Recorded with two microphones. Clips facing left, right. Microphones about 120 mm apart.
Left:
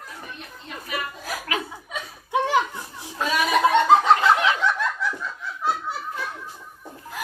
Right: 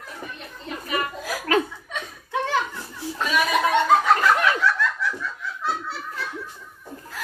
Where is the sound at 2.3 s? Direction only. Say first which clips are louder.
Left 3 dB; 15° left (ahead or behind).